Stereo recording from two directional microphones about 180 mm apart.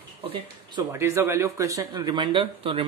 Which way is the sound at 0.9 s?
15° right (ahead or behind).